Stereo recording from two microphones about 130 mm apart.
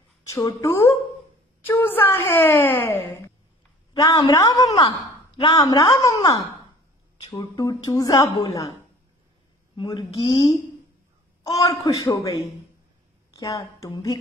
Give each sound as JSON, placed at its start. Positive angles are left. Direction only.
{"t": 0.3, "sound": "a woman's voice", "side_deg": 25}
{"t": 4.0, "sound": "a woman's voice", "side_deg": 35}
{"t": 9.8, "sound": "a woman's voice", "side_deg": 40}
{"t": 11.5, "sound": "a woman's voice", "side_deg": 25}